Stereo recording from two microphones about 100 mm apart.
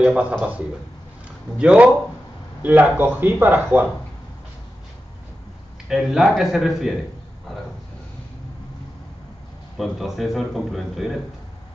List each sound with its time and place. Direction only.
0.0 s speech: 10° right (ahead or behind)
1.6 s speech: 10° right (ahead or behind)
5.9 s a man's voice: 5° right (ahead or behind)
9.8 s a man's voice: centre (ahead or behind)